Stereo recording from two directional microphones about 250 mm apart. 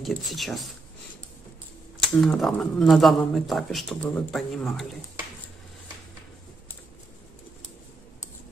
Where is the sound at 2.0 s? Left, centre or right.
Centre.